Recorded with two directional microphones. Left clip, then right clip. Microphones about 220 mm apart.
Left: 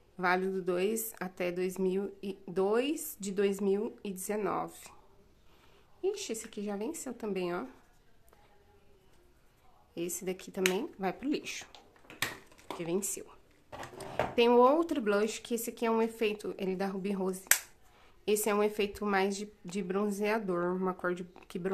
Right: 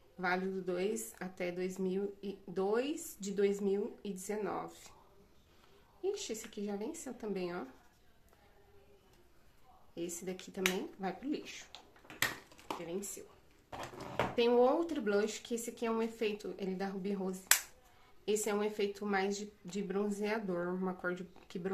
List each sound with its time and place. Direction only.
0.2 s a woman's voice: 30° left (ahead or behind)
6.0 s a woman's voice: 30° left (ahead or behind)
9.9 s a woman's voice: 30° left (ahead or behind)
14.3 s a woman's voice: 30° left (ahead or behind)